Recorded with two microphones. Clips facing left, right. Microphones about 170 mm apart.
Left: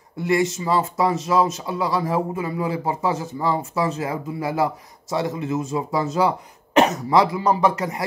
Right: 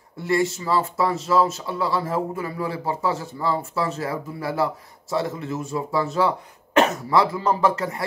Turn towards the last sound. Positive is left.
turn(degrees=15)  # may be behind; listen again after turning